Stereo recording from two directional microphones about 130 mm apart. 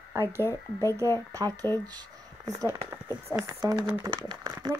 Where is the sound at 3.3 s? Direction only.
25° right (ahead or behind).